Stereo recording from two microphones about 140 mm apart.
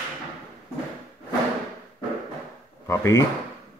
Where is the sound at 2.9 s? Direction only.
20° left (ahead or behind).